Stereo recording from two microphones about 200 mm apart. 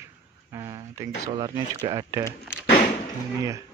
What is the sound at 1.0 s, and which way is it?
Speech, 20° right (ahead or behind).